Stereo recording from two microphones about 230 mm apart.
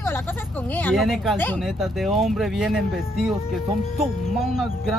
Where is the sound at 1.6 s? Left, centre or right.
Centre.